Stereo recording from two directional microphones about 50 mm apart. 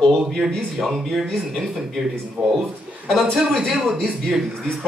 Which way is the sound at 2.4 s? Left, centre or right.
Right.